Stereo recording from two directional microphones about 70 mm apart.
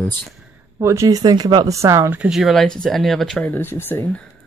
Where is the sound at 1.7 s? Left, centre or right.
Right.